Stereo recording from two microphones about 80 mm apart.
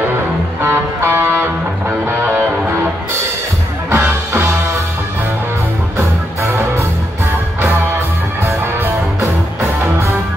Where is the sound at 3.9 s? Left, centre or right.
Right.